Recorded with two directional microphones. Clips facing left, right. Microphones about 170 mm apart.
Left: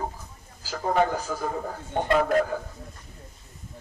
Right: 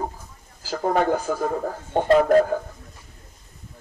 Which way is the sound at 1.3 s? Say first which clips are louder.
Right 7 dB; 60° right (ahead or behind).